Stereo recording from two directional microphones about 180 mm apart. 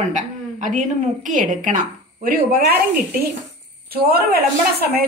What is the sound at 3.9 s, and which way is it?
A woman's voice, 60° right (ahead or behind).